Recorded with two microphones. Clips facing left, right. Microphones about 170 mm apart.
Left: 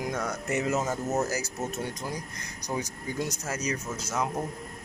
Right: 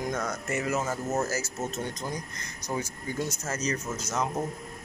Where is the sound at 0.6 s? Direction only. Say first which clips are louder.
Left 1 dB; 20° left (ahead or behind).